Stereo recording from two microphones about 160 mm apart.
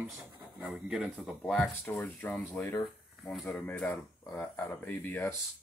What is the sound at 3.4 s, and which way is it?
Speech, 5° left (ahead or behind).